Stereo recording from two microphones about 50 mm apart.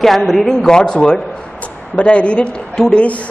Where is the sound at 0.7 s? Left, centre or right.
Centre.